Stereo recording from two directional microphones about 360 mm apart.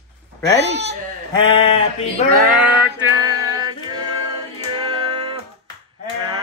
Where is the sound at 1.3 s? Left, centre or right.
Centre.